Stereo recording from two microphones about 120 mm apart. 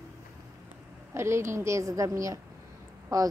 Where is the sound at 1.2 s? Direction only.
20° right (ahead or behind).